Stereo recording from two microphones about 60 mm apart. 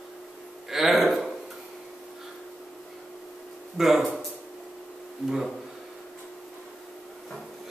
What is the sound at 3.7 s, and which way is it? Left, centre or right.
Speech, centre.